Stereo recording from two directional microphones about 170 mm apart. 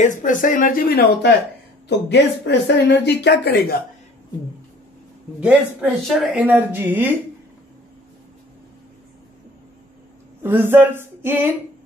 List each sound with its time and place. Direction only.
0.0 s speech: 50° left (ahead or behind); by 1.3 s 65° left (ahead or behind)
1.9 s speech: 90° left; by 3.7 s 70° left (ahead or behind)
5.4 s speech: 5° right (ahead or behind)
10.4 s speech: 15° right (ahead or behind)